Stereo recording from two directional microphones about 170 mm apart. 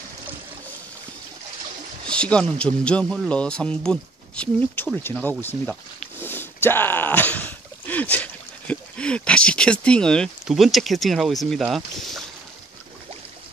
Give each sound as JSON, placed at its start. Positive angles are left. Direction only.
{"t": 2.0, "sound": "speech", "side_deg": 5}